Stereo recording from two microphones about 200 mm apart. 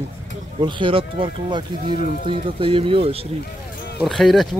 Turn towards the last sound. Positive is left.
turn(degrees=0)  # may be behind; listen again after turning